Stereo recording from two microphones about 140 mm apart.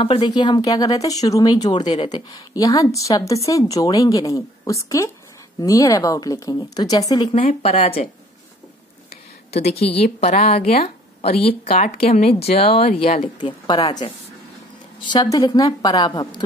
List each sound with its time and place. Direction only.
0.0 s a woman's voice: 40° left (ahead or behind)
0.3 s speech: 30° left (ahead or behind)
7.6 s speech: 50° left (ahead or behind)
9.1 s speech: 50° left (ahead or behind)
15.0 s a woman's voice: 30° left (ahead or behind)